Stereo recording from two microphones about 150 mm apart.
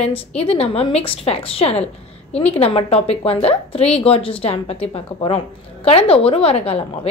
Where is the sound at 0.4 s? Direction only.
40° left (ahead or behind).